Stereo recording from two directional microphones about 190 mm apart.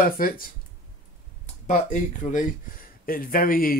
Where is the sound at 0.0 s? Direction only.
50° left (ahead or behind).